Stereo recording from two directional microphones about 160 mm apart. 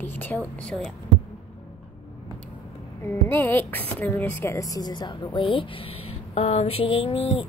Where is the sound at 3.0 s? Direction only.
15° left (ahead or behind); by 7.5 s 40° left (ahead or behind).